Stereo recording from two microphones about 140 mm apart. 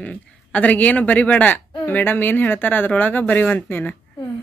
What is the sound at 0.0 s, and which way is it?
Speech, 10° left (ahead or behind).